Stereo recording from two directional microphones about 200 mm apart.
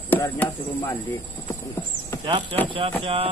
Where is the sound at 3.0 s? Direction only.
30° right (ahead or behind).